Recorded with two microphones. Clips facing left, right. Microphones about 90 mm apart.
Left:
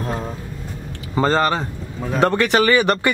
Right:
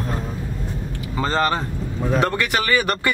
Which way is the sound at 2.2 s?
25° left (ahead or behind).